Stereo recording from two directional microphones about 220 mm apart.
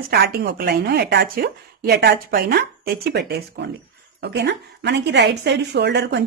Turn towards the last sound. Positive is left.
turn(degrees=-50)  # may be behind; listen again after turning